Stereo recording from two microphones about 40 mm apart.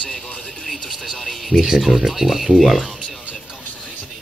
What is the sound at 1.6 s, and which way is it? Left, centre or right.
Speech, centre.